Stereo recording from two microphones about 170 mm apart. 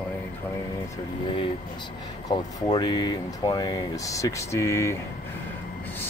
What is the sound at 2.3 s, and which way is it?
Speech, 25° left (ahead or behind).